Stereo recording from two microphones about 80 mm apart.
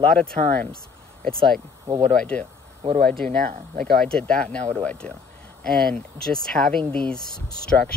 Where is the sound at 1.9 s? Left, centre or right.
Right.